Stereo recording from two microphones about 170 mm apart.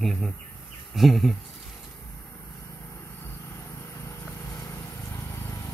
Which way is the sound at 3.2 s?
15° left (ahead or behind).